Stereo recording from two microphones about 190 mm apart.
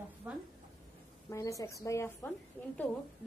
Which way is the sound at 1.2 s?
15° left (ahead or behind).